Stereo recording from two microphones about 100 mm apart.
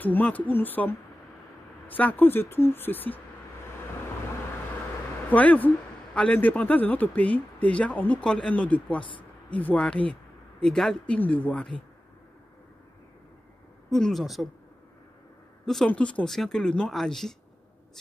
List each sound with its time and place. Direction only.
0.0 s speech: 15° left (ahead or behind)
5.3 s speech: 15° left (ahead or behind)
13.8 s speech: 5° left (ahead or behind)
15.6 s speech: 5° left (ahead or behind)